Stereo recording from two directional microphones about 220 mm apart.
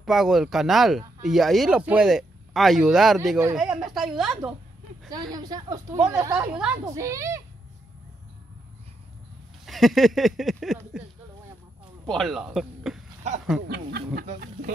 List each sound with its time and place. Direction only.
0.0 s speech: centre (ahead or behind)
5.1 s speech: 15° right (ahead or behind)
9.7 s speech: centre (ahead or behind)
12.1 s speech: centre (ahead or behind)